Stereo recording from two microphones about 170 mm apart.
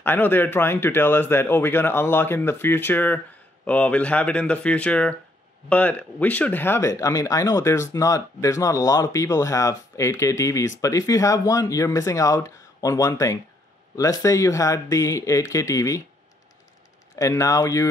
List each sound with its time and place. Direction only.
0.0 s speech: 10° left (ahead or behind)
17.1 s speech: 20° left (ahead or behind)